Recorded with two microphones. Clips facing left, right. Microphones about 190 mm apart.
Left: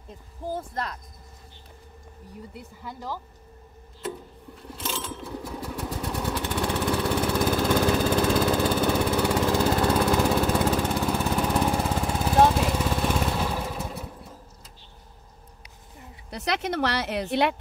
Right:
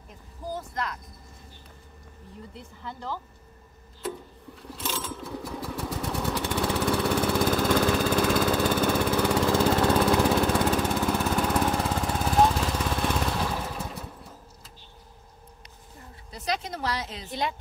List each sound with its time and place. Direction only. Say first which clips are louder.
0.6 s speech: left 1 dB; 30° left (ahead or behind)
2.5 s speech: left 1 dB; 10° left (ahead or behind)
4.7 s engine: even; centre (ahead or behind)
5.9 s lawn mower: even; centre (ahead or behind)
6.2 s lawn mower: even; 10° left (ahead or behind)
7.5 s lawn mower: left 1 dB; 15° left (ahead or behind)
9.2 s lawn mower: even; 5° left (ahead or behind)
16.3 s speech: left 4 dB; 70° left (ahead or behind)